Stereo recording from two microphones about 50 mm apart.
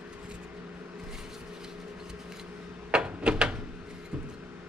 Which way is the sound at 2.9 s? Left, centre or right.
Centre.